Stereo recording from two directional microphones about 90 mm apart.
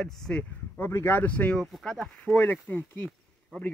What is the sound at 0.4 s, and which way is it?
Speech, 25° left (ahead or behind).